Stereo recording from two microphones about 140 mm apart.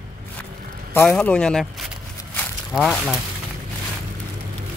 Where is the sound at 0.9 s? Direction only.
10° left (ahead or behind).